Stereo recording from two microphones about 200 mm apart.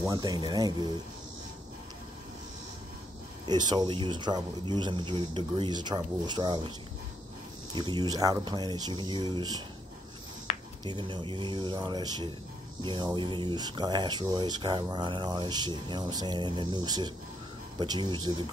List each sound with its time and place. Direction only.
0.0 s speech: 20° right (ahead or behind)
3.4 s speech: 20° right (ahead or behind)
7.7 s speech: 20° right (ahead or behind)
10.5 s a sound: 35° left (ahead or behind)
10.9 s speech: 20° right (ahead or behind)